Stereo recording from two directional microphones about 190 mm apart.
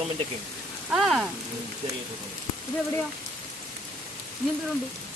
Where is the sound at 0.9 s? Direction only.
Centre (ahead or behind).